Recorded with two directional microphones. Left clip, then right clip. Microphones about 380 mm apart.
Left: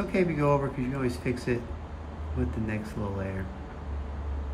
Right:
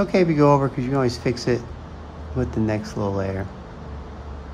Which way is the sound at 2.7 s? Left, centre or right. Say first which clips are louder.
Right 10 dB; centre.